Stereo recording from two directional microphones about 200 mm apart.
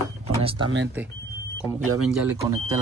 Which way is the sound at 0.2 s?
30° right (ahead or behind).